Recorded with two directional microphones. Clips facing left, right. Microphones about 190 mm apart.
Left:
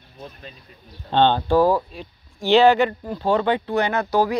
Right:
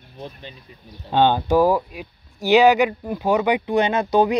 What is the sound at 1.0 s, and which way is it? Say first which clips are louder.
Speech: even; 10° right (ahead or behind).